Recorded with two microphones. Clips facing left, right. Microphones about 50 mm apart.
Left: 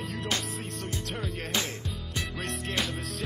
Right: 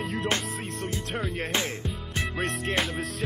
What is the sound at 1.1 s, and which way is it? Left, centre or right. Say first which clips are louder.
Music: right 4 dB; centre.